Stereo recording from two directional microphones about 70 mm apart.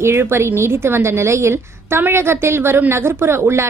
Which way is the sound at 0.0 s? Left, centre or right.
Right.